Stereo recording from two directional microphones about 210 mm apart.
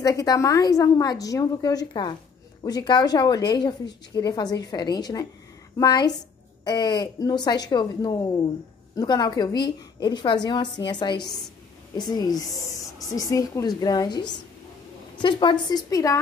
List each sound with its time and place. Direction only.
0.0 s speech: 15° left (ahead or behind)